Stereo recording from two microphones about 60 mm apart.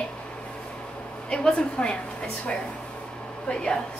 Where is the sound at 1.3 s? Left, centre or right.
Centre.